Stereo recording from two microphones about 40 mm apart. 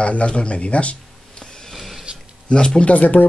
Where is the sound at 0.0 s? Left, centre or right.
Left.